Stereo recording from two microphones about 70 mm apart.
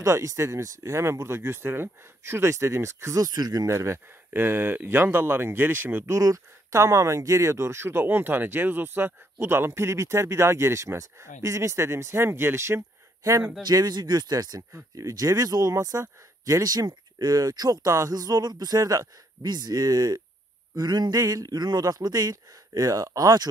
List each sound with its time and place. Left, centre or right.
0.0 s speech: right
3.3 s speech: right
3.6 s speech: right
6.0 s speech: right
13.2 s speech: right
13.6 s speech: right
15.0 s speech: right
16.6 s speech: right
20.7 s speech: right